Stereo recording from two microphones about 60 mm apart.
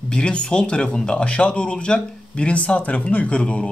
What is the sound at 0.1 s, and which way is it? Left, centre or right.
Speech, centre.